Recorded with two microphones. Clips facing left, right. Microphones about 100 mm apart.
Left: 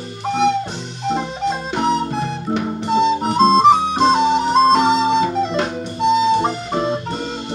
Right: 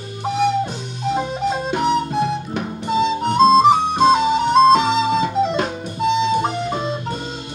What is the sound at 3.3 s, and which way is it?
Flute, centre (ahead or behind).